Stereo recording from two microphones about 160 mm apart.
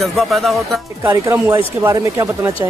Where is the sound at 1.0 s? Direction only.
15° right (ahead or behind).